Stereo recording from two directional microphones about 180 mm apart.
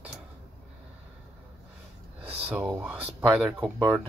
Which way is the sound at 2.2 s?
35° right (ahead or behind).